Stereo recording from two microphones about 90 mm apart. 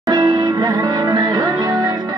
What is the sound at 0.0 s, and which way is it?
Music, 50° right (ahead or behind).